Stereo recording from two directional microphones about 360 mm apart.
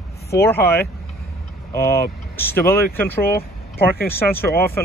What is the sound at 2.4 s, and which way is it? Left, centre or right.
Speech, centre.